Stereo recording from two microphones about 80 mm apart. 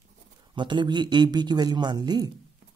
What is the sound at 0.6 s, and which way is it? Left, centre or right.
Speech, right.